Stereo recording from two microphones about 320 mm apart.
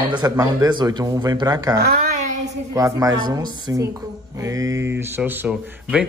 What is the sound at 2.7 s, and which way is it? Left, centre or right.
A man's voice, centre.